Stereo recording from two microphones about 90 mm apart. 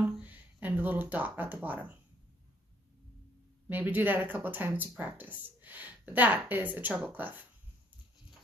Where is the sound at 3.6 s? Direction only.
20° right (ahead or behind).